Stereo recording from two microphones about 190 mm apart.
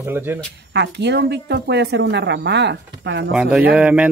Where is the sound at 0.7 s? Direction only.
65° right (ahead or behind).